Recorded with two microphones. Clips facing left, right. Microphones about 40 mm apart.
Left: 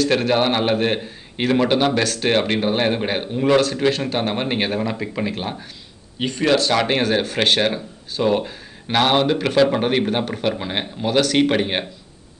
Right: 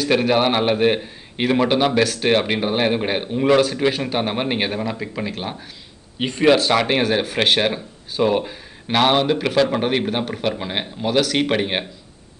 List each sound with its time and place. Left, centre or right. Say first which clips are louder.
0.0 s a man's voice: even; centre
6.1 s speech: right 3 dB; centre
6.8 s a man's voice: even; centre